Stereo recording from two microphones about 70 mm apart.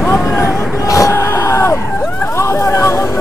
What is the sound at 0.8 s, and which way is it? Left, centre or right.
Hubbub, left.